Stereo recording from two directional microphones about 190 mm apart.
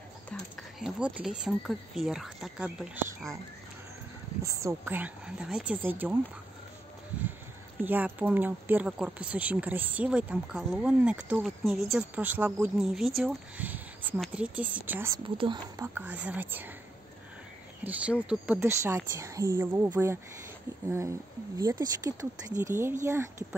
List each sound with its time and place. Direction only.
0.3 s speech: centre (ahead or behind)
4.4 s speech: 15° right (ahead or behind)
7.8 s speech: 10° right (ahead or behind)
15.2 s speech: 25° right (ahead or behind); by 16.7 s 10° right (ahead or behind)
17.8 s speech: 5° right (ahead or behind)